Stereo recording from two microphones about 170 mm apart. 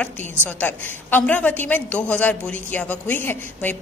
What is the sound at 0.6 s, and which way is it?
A woman's voice, 10° left (ahead or behind).